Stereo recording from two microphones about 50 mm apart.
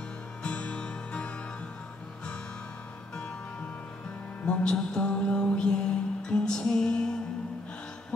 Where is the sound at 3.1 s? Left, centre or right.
Centre.